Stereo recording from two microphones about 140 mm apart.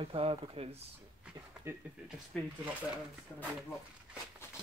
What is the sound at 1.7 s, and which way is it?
Speech, 15° right (ahead or behind).